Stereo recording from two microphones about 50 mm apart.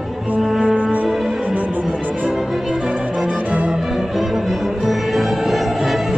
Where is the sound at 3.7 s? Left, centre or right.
Centre.